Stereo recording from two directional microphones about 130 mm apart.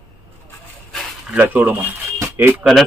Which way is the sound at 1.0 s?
10° right (ahead or behind).